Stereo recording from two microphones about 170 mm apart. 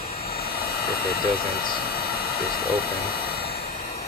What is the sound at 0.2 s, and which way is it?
Vehicle, 65° left (ahead or behind).